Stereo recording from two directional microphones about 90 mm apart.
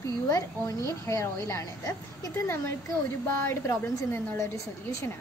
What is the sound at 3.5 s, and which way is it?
A woman's voice, 30° left (ahead or behind).